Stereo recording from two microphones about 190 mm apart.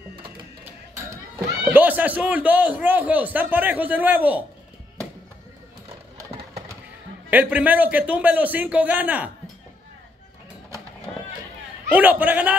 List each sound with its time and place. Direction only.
1.6 s a man's voice: 10° right (ahead or behind)
7.2 s a man's voice: 5° right (ahead or behind)
11.9 s a man's voice: 10° right (ahead or behind)